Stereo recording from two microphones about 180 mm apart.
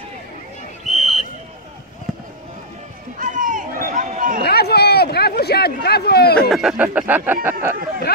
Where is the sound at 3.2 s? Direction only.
45° right (ahead or behind).